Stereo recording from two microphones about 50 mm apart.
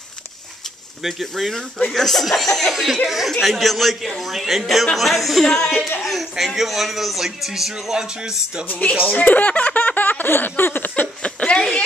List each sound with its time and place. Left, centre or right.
1.0 s a man's voice: centre
8.6 s speech: left
9.1 s a sound: left
11.2 s chuckle: left